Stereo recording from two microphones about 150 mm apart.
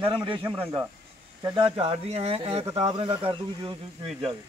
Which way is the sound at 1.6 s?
40° right (ahead or behind).